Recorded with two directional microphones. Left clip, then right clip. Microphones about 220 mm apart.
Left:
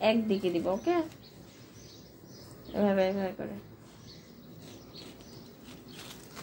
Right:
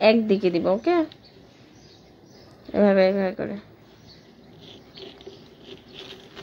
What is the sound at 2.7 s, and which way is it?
Speech, 40° right (ahead or behind).